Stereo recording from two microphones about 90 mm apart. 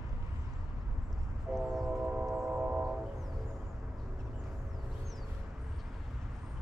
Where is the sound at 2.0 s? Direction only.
15° right (ahead or behind).